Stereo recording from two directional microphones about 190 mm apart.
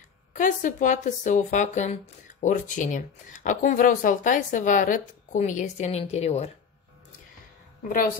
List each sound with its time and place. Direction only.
0.3 s speech: 45° left (ahead or behind)